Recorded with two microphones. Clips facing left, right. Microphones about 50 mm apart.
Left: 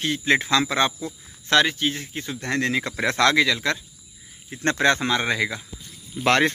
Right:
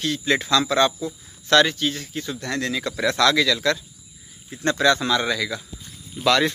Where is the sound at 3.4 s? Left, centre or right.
Left.